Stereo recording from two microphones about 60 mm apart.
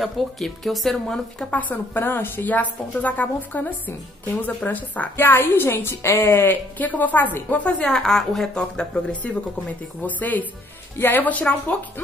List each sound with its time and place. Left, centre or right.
0.0 s speech: centre
1.5 s a woman's voice: left
7.8 s a woman's voice: centre
10.0 s a woman's voice: left
11.0 s a woman's voice: left
11.2 s a woman's voice: left